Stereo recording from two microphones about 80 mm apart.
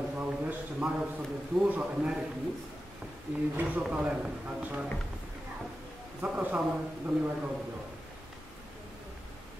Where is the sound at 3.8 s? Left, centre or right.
Centre.